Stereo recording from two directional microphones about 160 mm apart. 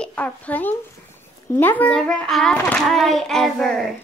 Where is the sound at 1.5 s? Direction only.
10° left (ahead or behind).